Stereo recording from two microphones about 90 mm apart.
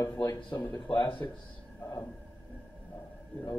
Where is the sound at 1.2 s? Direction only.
35° left (ahead or behind).